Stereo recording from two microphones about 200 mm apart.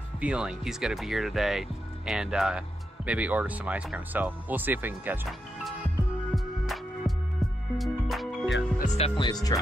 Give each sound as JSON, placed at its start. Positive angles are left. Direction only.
{"t": 0.2, "sound": "speech", "side_deg": -5}
{"t": 6.3, "sound": "music", "side_deg": 0}
{"t": 8.7, "sound": "speech", "side_deg": 35}